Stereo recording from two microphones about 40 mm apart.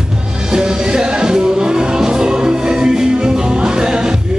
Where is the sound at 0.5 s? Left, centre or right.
Centre.